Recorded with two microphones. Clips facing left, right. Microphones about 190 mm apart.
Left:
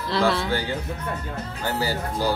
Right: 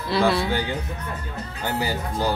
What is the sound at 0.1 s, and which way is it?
Speech, 15° right (ahead or behind).